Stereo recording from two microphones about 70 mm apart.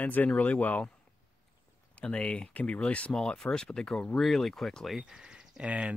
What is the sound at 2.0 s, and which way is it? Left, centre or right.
Speech, centre.